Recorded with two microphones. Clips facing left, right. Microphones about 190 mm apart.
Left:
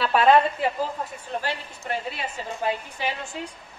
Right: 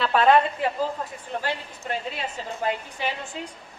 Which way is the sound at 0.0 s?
5° left (ahead or behind).